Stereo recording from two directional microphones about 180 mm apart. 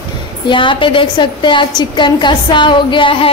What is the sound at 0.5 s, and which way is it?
A woman's voice, 25° left (ahead or behind).